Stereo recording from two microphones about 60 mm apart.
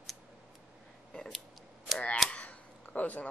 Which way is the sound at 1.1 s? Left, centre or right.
Centre.